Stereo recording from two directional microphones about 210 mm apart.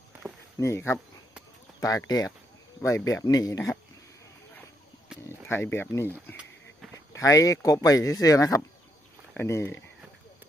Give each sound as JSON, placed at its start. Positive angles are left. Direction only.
{"t": 0.6, "sound": "speech", "side_deg": 15}
{"t": 5.5, "sound": "speech", "side_deg": 10}